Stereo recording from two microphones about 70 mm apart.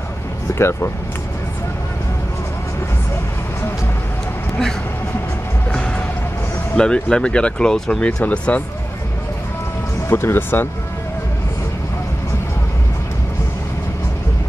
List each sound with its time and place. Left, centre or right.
0.5 s speech: left
5.7 s music: centre
6.7 s speech: centre
8.0 s speech: centre
10.0 s speech: left